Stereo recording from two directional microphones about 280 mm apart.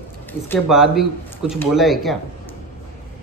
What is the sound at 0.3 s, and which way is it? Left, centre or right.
Speech, centre.